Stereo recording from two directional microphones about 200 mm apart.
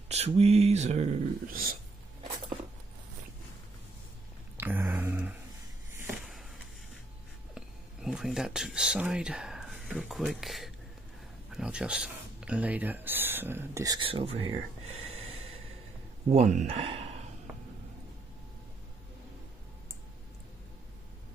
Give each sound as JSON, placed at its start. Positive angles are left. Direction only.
{"t": 0.1, "sound": "mantra", "side_deg": -30}
{"t": 1.5, "sound": "speech", "side_deg": -45}
{"t": 4.6, "sound": "a sound", "side_deg": -10}
{"t": 7.5, "sound": "speech", "side_deg": -5}
{"t": 15.0, "sound": "snort", "side_deg": -90}
{"t": 16.3, "sound": "speech", "side_deg": -35}